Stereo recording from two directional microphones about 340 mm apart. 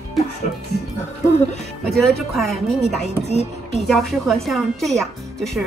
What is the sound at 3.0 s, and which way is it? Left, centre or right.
Speech, centre.